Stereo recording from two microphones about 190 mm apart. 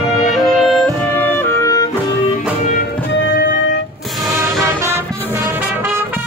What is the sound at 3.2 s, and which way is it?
Music, 65° left (ahead or behind).